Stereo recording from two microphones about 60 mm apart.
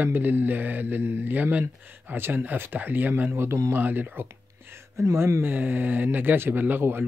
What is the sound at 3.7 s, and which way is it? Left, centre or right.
Speech, right.